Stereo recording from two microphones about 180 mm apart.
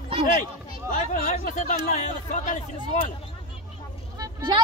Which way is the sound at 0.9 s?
50° left (ahead or behind).